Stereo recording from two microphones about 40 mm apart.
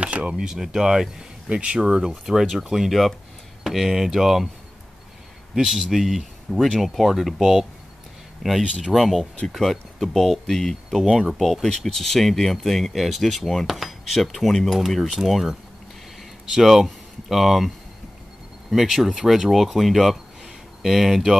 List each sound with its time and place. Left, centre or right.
0.0 s a sound: right
0.4 s speech: centre
1.6 s speech: right
2.3 s speech: centre
5.7 s speech: centre
6.5 s speech: centre
6.8 s speech: centre
10.9 s speech: centre
13.7 s speech: centre
15.0 s speech: centre
16.6 s speech: centre
18.8 s speech: centre
20.4 s a sound: centre